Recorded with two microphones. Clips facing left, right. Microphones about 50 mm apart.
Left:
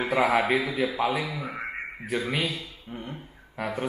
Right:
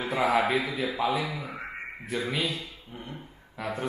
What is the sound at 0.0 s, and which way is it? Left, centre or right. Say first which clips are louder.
A man's voice: left 2 dB; left.